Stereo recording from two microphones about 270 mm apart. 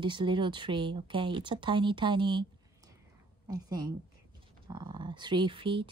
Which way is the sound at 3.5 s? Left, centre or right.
Centre.